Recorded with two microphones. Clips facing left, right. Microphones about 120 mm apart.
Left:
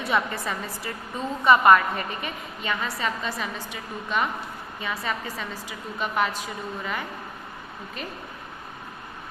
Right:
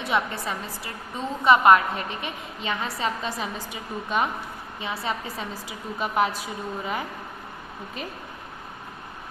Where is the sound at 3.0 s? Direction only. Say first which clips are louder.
Right 1 dB; 30° right (ahead or behind).